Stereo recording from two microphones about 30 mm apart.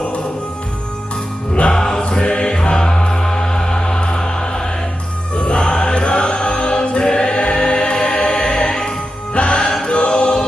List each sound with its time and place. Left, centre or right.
1.5 s music: left
5.3 s choir: left
9.3 s music: left